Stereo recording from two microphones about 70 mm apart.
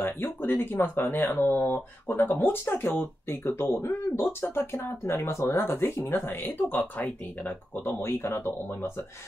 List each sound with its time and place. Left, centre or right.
0.0 s speech: left